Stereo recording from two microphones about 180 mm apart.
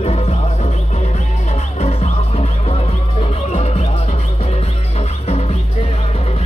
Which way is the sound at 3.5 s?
35° left (ahead or behind).